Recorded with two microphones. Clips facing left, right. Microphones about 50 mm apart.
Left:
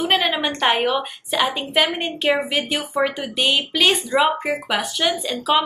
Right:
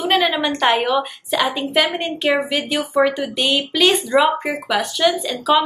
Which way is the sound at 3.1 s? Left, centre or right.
Centre.